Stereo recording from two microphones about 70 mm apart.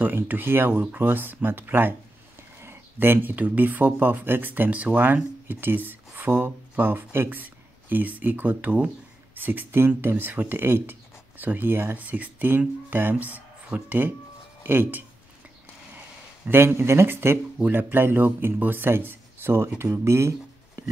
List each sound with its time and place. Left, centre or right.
0.0 s speech: right
16.4 s speech: right